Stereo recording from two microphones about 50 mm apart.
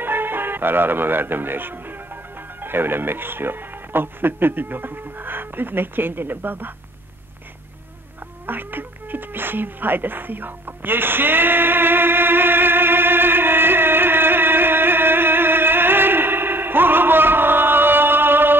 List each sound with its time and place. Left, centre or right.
0.0 s speech: right
8.5 s cat: right